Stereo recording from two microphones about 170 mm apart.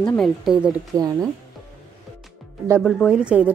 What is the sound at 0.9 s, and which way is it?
Speech, 20° right (ahead or behind).